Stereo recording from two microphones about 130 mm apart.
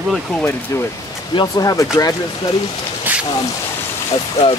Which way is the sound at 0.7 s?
25° left (ahead or behind).